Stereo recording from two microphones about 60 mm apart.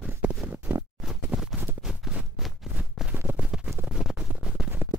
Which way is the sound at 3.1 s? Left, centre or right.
Right.